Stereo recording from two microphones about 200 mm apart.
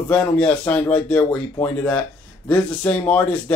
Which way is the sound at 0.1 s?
5° left (ahead or behind).